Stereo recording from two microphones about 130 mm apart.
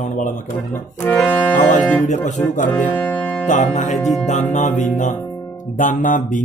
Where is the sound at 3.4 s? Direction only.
75° left (ahead or behind).